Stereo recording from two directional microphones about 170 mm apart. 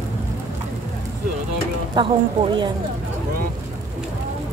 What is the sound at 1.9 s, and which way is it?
Speech, 30° right (ahead or behind).